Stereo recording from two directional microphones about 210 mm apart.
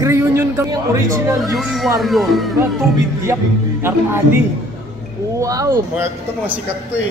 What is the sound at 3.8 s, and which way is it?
Speech, 10° right (ahead or behind).